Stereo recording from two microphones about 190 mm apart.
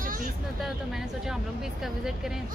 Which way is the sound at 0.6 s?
Centre (ahead or behind).